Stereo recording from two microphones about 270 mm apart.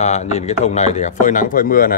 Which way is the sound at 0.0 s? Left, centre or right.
Left.